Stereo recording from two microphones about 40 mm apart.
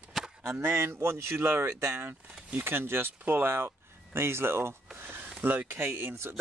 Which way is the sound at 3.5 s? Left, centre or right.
Right.